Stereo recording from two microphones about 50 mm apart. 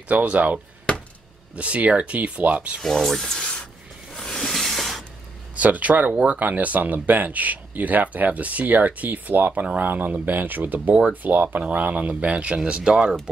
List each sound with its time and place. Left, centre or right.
0.1 s speech: right
2.8 s speech: centre
3.3 s speech: centre
4.1 s a sound: centre
5.6 s speech: right